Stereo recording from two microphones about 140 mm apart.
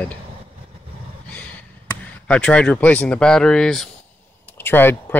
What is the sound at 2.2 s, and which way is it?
Speech, 10° left (ahead or behind).